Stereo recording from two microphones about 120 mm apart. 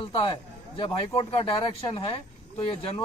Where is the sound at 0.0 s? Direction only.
45° left (ahead or behind).